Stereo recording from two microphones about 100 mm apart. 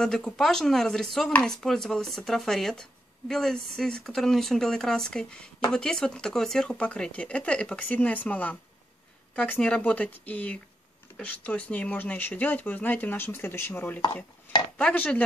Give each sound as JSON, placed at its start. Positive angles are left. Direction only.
{"t": 0.0, "sound": "speech", "side_deg": 5}